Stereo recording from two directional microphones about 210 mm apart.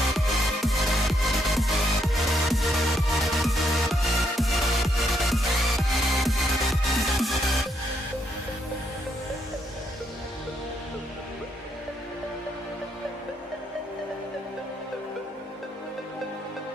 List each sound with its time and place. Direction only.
0.1 s music: centre (ahead or behind)